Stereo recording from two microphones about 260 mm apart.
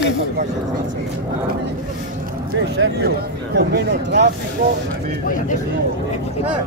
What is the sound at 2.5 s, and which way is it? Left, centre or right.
Speech, right.